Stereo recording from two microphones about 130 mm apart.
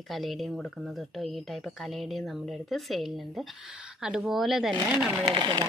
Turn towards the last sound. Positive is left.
turn(degrees=-35)  # may be behind; listen again after turning